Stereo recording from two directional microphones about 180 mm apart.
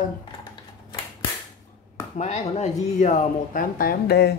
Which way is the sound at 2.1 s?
40° left (ahead or behind).